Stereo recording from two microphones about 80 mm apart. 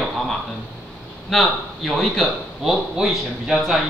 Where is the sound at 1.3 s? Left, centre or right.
Centre.